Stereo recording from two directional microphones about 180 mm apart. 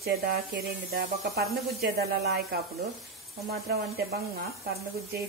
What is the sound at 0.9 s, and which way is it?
A woman's voice, 55° right (ahead or behind).